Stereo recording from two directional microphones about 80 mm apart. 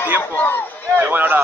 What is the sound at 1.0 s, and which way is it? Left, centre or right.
Speech, right.